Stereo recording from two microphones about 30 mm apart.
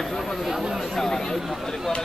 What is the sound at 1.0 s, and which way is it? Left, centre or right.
Speech, centre.